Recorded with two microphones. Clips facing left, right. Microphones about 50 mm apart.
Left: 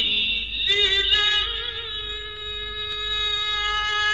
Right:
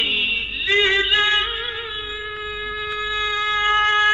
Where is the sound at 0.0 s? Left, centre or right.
Right.